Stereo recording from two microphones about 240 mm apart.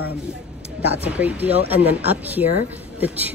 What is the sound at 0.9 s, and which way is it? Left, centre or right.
A woman's voice, centre.